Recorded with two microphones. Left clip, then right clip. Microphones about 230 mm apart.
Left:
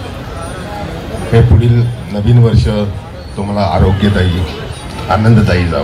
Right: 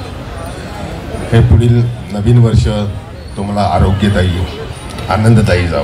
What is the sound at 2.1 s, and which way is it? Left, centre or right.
Speech, right.